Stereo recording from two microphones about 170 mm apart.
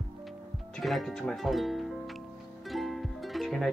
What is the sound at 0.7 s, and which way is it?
Speech, centre (ahead or behind).